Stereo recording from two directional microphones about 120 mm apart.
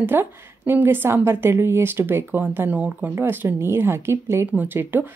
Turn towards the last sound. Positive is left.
turn(degrees=-15)  # may be behind; listen again after turning